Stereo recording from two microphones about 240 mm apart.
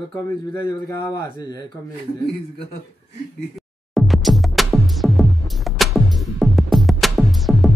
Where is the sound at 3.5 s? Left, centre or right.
Centre.